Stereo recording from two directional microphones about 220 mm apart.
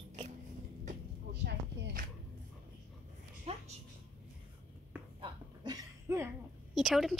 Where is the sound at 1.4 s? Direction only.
50° right (ahead or behind).